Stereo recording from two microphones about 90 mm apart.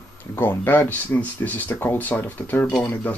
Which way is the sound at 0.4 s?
20° left (ahead or behind).